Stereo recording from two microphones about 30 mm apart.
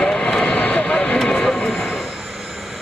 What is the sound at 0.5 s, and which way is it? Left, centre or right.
Vehicle, left.